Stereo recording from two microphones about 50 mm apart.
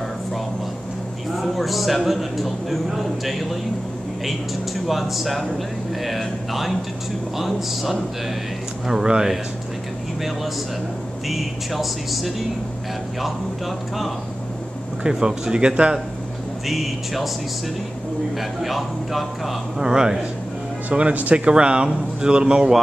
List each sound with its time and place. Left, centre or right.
1.4 s a man's voice: centre
4.8 s a man's voice: centre
8.8 s speech: centre
11.2 s a man's voice: centre
15.0 s speech: centre
16.6 s a man's voice: centre
18.6 s a man's voice: centre
19.8 s speech: centre
20.9 s speech: right